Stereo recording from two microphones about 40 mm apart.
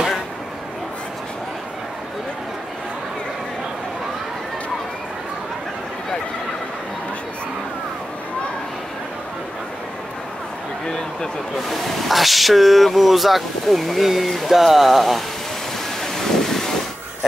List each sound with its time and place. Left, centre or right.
10.9 s a sound: centre
11.7 s speech: centre
16.0 s wind noise: centre